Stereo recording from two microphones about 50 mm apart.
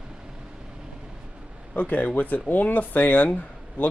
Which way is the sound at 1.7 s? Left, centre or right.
Left.